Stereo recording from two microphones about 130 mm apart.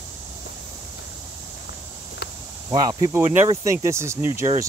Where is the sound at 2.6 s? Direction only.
30° right (ahead or behind).